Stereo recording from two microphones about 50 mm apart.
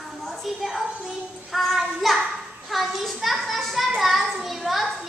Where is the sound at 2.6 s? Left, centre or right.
Centre.